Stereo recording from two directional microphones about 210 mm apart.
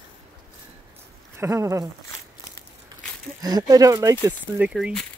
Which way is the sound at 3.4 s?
15° right (ahead or behind).